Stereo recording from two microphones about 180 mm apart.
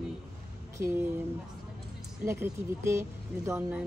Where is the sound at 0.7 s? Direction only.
15° right (ahead or behind).